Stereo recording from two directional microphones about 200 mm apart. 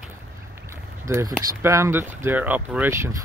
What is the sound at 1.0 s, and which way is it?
Speech, 15° right (ahead or behind).